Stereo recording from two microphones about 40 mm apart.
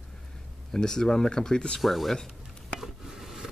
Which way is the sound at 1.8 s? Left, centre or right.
Centre.